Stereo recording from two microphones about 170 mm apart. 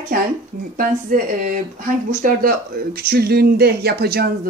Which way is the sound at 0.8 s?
55° right (ahead or behind).